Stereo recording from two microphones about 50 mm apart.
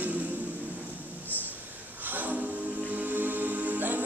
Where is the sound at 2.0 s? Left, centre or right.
Right.